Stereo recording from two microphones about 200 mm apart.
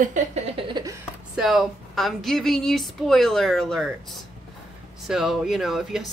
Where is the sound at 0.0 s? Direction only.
35° right (ahead or behind).